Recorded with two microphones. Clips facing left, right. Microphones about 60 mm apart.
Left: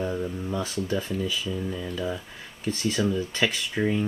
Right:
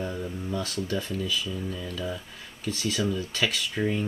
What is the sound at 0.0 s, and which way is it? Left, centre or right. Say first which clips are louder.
Speech: left 4 dB; centre.